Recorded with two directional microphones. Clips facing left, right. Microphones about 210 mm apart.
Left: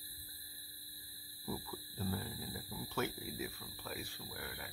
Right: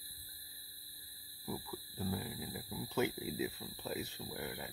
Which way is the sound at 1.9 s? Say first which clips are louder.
Right 1 dB; 15° right (ahead or behind).